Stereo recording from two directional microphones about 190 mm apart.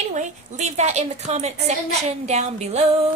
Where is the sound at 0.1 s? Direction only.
40° right (ahead or behind).